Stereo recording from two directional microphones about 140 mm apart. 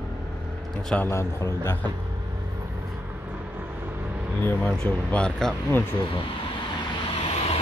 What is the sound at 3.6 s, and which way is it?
Vehicle, 15° right (ahead or behind).